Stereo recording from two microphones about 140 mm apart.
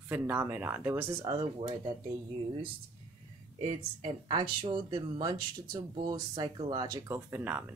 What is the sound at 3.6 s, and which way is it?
Speech, 35° right (ahead or behind).